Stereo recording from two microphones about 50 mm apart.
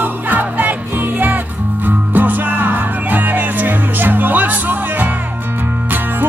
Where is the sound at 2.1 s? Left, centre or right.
Right.